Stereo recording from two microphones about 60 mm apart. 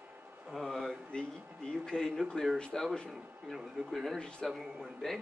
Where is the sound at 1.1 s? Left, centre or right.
Centre.